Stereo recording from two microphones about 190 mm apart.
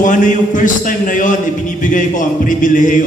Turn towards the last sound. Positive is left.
turn(degrees=45)  # may be behind; listen again after turning